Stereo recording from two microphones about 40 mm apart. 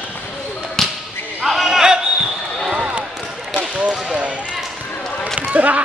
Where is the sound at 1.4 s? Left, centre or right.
Centre.